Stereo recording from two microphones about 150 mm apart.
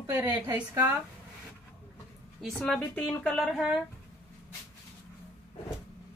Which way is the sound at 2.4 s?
5° left (ahead or behind).